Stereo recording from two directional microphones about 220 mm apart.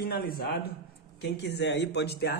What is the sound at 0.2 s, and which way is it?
A man's voice, 45° left (ahead or behind).